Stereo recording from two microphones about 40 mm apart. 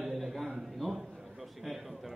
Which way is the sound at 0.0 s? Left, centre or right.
Centre.